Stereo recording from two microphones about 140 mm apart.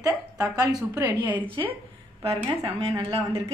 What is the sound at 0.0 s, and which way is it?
Speech, 25° right (ahead or behind).